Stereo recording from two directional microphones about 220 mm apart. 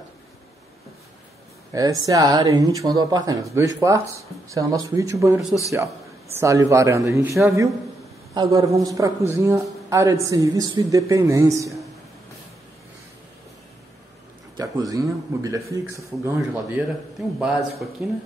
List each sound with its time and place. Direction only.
1.7 s speech: 15° right (ahead or behind)
6.4 s speech: 15° right (ahead or behind)
14.6 s speech: 15° right (ahead or behind)
16.3 s speech: 5° right (ahead or behind)